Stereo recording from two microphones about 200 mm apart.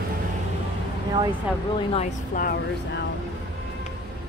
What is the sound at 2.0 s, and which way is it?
Speech, 45° left (ahead or behind).